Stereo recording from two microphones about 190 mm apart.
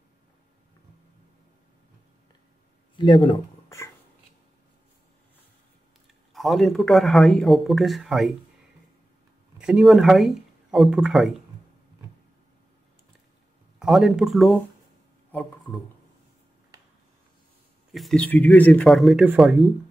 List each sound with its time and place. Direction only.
3.0 s speech: 25° left (ahead or behind)
3.6 s a sound: 15° left (ahead or behind)
6.3 s speech: centre (ahead or behind)
9.6 s speech: 5° right (ahead or behind)
13.7 s speech: centre (ahead or behind)
17.9 s speech: 5° left (ahead or behind)